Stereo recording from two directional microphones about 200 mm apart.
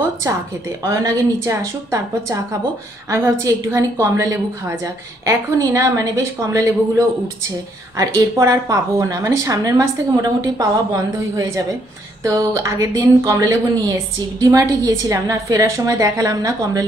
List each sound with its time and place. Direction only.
0.8 s a woman's voice: 15° right (ahead or behind)